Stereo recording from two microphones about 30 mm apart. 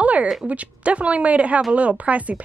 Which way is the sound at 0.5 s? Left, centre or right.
Right.